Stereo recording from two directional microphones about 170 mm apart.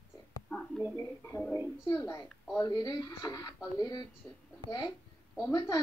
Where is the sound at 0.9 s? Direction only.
15° left (ahead or behind).